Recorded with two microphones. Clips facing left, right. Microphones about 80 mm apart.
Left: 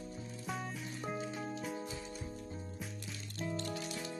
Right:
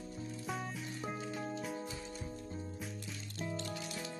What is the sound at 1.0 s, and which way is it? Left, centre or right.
Music, centre.